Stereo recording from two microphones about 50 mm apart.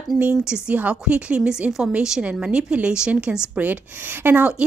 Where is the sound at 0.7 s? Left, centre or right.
Right.